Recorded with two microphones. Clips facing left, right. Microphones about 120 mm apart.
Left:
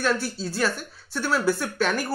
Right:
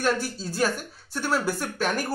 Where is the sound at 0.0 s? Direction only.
45° right (ahead or behind).